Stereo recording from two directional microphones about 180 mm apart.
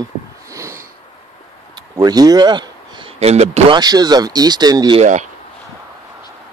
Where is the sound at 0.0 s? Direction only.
15° right (ahead or behind).